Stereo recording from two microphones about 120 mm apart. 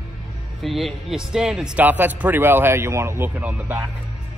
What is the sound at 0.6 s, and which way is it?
A man's voice, centre (ahead or behind).